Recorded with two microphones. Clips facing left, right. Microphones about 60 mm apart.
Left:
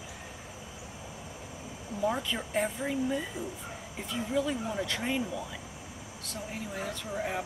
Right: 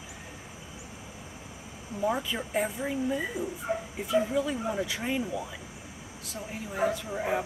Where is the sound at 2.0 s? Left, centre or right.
Centre.